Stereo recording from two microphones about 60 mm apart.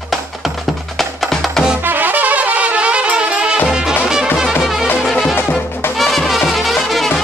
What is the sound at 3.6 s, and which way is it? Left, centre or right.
Music, centre.